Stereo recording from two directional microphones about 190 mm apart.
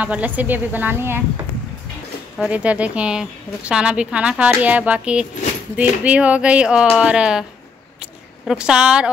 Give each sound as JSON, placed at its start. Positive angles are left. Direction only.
{"t": 0.0, "sound": "a woman's voice", "side_deg": -10}
{"t": 2.3, "sound": "a woman's voice", "side_deg": -5}
{"t": 8.0, "sound": "a sound", "side_deg": -5}